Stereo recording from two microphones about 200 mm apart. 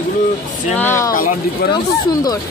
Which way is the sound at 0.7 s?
10° left (ahead or behind).